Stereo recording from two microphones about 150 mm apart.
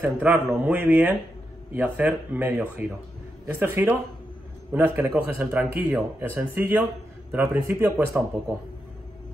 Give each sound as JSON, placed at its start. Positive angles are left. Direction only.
{"t": 0.0, "sound": "speech", "side_deg": -10}